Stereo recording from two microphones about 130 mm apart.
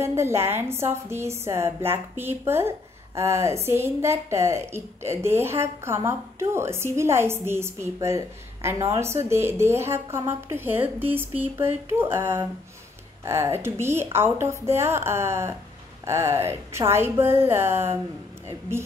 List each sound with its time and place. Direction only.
0.0 s a woman's voice: 20° right (ahead or behind)